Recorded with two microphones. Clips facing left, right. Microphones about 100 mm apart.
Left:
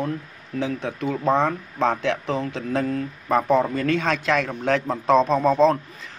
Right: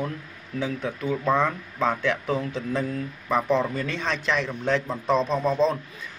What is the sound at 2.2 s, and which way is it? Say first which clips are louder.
Speech: left 1 dB; 30° left (ahead or behind).